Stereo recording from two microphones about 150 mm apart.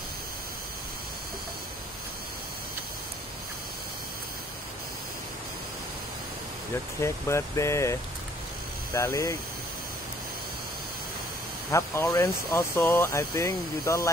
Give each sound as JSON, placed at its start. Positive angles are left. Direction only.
{"t": 7.0, "sound": "speech", "side_deg": 20}
{"t": 11.7, "sound": "speech", "side_deg": 20}